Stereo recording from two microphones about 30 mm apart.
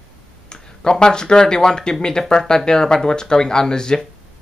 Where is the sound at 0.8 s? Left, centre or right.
Left.